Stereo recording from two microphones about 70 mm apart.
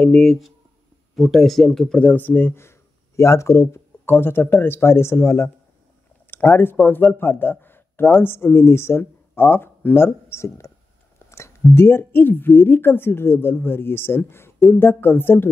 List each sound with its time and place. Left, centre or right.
0.0 s speech: centre
2.0 s a woman's voice: left